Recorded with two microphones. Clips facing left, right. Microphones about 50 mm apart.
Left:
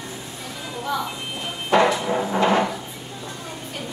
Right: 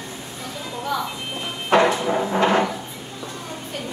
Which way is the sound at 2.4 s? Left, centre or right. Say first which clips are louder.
Even; right.